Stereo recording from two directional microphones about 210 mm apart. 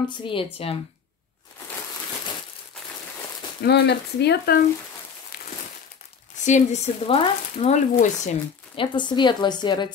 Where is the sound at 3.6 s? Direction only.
50° left (ahead or behind).